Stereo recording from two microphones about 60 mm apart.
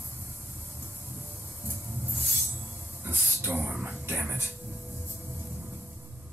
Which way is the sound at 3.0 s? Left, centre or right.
Right.